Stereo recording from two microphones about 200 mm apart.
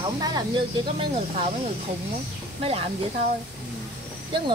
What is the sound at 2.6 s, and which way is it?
Speech, 30° right (ahead or behind).